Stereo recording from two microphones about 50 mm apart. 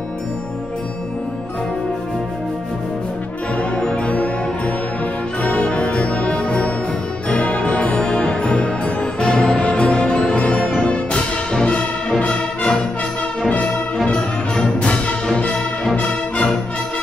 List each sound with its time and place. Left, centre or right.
3.7 s music: left
5.4 s music: left
12.3 s music: centre
14.0 s music: centre